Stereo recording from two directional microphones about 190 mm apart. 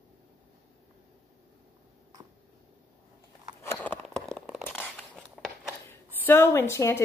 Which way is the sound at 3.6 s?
15° left (ahead or behind).